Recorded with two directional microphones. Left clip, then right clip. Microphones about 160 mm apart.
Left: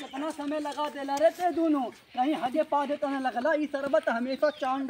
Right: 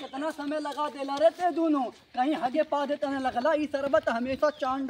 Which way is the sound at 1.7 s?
20° left (ahead or behind).